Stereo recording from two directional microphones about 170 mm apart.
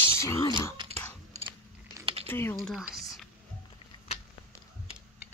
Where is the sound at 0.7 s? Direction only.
35° right (ahead or behind).